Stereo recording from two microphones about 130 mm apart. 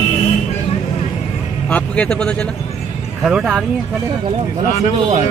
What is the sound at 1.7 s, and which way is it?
Speech, 10° left (ahead or behind).